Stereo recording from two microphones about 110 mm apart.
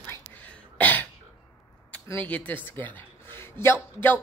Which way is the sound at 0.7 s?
15° left (ahead or behind).